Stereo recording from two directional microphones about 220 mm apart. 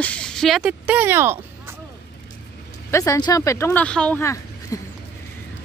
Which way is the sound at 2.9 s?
15° left (ahead or behind).